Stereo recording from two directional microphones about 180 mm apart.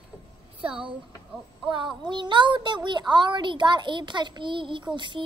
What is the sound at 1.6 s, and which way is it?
A child's voice, 25° right (ahead or behind).